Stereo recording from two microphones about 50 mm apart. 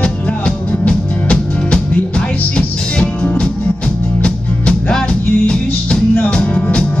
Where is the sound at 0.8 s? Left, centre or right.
Centre.